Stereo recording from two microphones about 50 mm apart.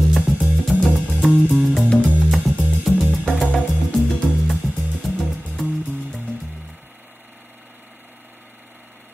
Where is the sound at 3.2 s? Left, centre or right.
Centre.